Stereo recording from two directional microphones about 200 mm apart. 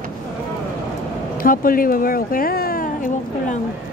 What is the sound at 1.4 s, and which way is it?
Speech, 45° left (ahead or behind).